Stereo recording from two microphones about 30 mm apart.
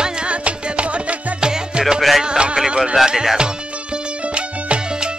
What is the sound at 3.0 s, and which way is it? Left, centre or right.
Speech, centre.